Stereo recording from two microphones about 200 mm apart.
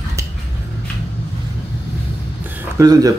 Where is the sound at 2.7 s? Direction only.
20° right (ahead or behind).